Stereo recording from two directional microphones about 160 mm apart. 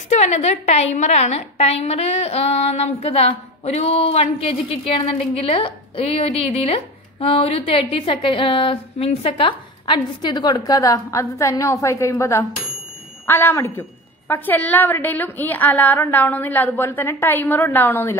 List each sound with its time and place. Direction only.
0.1 s a woman's voice: 45° left (ahead or behind); by 18.1 s 15° left (ahead or behind)